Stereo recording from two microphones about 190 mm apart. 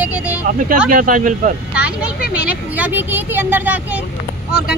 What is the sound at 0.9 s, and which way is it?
Speech, 45° right (ahead or behind).